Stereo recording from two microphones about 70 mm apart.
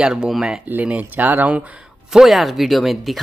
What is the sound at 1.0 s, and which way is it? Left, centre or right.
Speech, right.